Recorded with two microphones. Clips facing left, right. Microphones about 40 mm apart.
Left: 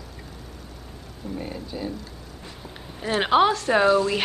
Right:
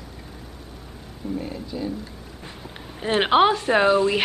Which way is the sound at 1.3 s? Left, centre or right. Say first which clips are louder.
Right 2 dB; centre.